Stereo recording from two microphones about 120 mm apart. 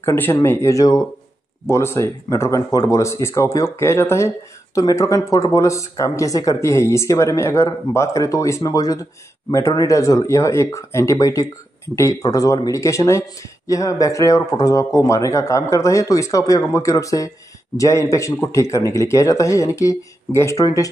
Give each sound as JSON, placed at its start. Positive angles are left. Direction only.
{"t": 0.0, "sound": "speech", "side_deg": 20}